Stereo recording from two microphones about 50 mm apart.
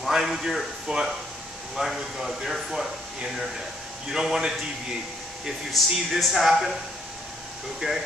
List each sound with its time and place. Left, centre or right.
0.1 s a man's voice: centre
5.7 s speech: centre
7.8 s a man's voice: centre